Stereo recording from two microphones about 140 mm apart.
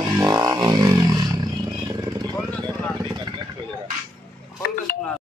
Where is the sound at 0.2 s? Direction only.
25° right (ahead or behind).